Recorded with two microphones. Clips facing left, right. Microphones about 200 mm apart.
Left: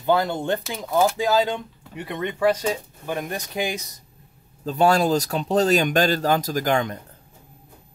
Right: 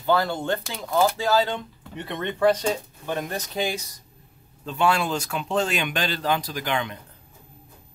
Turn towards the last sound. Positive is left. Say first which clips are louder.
# left 6 dB
turn(degrees=40)  # may be behind; listen again after turning